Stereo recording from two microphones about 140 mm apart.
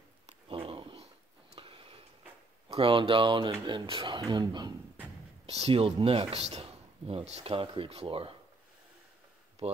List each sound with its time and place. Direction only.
0.3 s dog: 40° right (ahead or behind)
1.5 s a sound: 40° right (ahead or behind)
2.7 s speech: 40° right (ahead or behind)
5.5 s speech: 45° right (ahead or behind)
9.6 s speech: 50° right (ahead or behind)